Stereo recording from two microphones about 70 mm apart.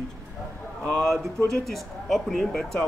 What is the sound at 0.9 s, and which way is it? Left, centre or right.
Speech, centre.